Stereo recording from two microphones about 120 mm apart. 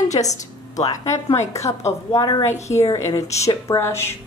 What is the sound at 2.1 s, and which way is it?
Speech, 40° left (ahead or behind).